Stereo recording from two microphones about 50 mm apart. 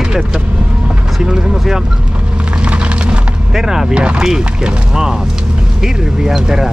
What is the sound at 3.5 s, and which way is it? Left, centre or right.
Speech, centre.